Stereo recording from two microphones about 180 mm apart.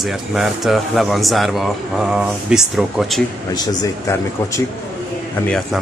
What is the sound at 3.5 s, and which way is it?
A man's voice, 20° left (ahead or behind).